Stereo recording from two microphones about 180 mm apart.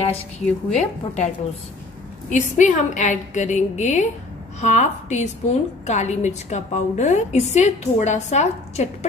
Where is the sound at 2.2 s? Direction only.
45° left (ahead or behind).